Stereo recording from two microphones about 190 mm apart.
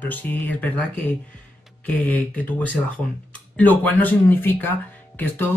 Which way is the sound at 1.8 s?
10° left (ahead or behind).